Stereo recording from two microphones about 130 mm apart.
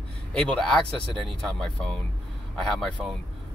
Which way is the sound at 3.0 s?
Centre (ahead or behind).